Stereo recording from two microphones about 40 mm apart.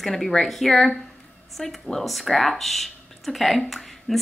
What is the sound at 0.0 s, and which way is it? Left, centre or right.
Speech, centre.